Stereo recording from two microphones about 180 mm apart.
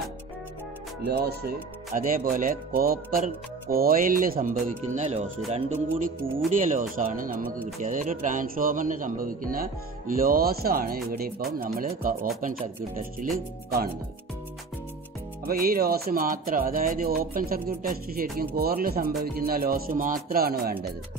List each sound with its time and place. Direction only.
1.0 s a man's voice: 60° right (ahead or behind); by 5.2 s 40° right (ahead or behind)
6.5 s a man's voice: 45° right (ahead or behind)
15.4 s speech: 55° right (ahead or behind)